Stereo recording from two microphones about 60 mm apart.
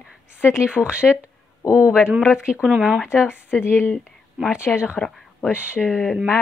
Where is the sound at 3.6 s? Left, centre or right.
Left.